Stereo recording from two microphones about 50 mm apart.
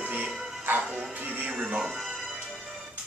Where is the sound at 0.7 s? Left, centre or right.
Right.